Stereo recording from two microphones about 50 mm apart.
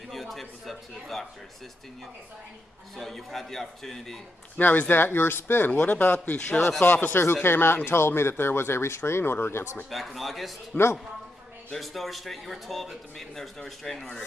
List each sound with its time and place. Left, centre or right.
0.1 s a man's voice: centre
3.0 s a man's voice: centre
4.6 s speech: left
5.7 s a man's voice: left
6.8 s speech: left
9.8 s a man's voice: centre
10.7 s a man's voice: left
11.7 s a man's voice: centre